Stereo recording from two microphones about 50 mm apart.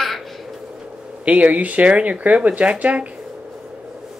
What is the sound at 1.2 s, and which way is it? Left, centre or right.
Speech, right.